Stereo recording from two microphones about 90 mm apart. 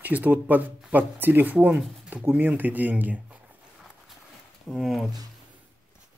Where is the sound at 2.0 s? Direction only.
20° right (ahead or behind).